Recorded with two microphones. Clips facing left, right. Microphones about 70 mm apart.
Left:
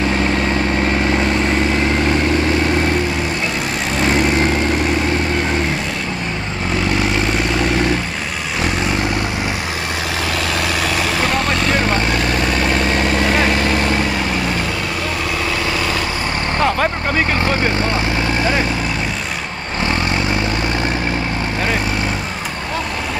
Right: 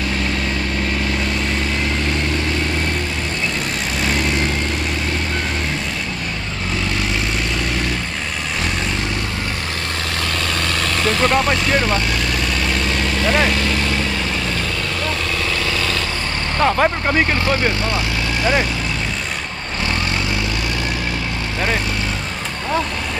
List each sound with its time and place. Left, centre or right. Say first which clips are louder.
0.8 s vehicle: left 5 dB; left
11.0 s vehicle: right 1 dB; centre
11.8 s vehicle: left 3 dB; left
16.6 s vehicle: right 3 dB; centre
17.8 s vehicle: left 3 dB; left